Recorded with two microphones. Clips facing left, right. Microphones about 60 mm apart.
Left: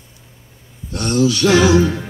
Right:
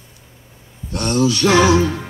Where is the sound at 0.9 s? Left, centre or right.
Right.